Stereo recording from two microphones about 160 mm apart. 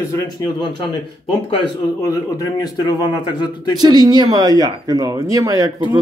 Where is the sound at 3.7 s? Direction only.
25° right (ahead or behind).